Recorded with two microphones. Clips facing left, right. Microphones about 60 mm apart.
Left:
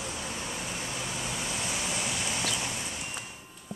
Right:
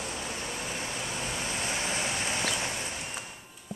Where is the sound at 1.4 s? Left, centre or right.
Right.